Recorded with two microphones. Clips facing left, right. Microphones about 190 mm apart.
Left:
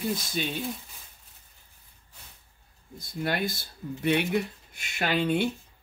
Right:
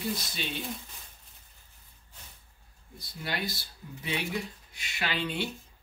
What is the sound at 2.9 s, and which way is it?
Speech, 50° left (ahead or behind).